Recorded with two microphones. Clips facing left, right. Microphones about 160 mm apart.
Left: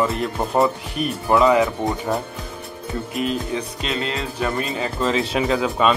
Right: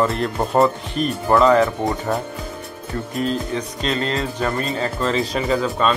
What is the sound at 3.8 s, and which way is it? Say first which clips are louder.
Speech: right 3 dB; 5° left (ahead or behind).